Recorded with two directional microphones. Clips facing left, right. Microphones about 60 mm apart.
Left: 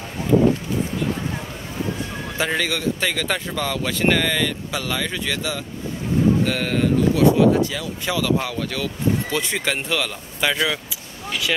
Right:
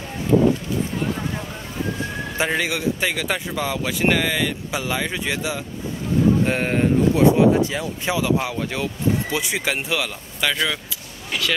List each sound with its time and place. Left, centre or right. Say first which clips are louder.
2.3 s a man's voice: even; centre
6.4 s speech: right 1 dB; right
9.4 s a man's voice: even; centre
10.4 s speech: left 1 dB; centre